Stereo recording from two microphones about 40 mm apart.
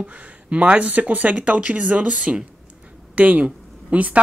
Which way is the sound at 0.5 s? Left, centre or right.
Right.